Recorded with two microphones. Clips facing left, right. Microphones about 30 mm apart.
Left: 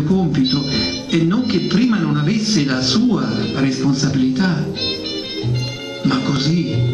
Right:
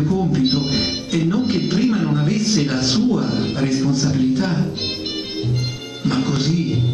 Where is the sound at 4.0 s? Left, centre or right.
Left.